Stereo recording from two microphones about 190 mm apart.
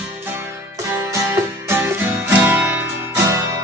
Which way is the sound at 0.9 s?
15° right (ahead or behind).